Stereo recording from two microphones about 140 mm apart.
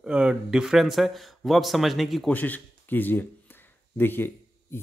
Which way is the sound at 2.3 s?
10° left (ahead or behind).